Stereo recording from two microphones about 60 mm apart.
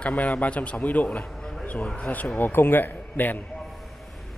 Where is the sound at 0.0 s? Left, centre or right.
Left.